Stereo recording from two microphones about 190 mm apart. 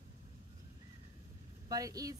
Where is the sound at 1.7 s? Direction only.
20° right (ahead or behind).